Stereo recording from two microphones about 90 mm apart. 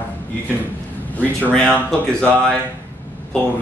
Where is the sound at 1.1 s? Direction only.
15° left (ahead or behind).